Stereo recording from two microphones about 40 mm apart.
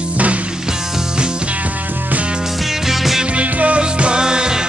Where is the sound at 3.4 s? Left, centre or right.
Right.